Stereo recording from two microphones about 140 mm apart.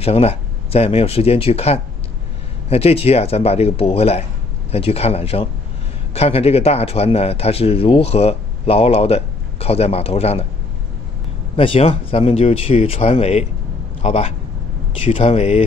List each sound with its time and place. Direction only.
0.0 s a man's voice: 45° left (ahead or behind)
11.5 s a man's voice: 40° left (ahead or behind)